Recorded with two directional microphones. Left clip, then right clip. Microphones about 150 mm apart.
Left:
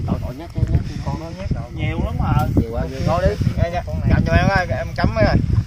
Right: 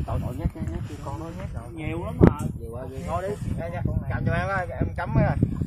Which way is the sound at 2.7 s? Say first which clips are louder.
Left 9 dB; 30° left (ahead or behind).